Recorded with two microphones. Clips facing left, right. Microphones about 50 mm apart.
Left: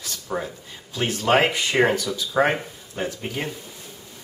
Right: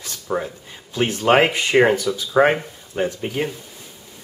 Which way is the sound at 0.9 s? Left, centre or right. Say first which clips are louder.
Right 4 dB; right.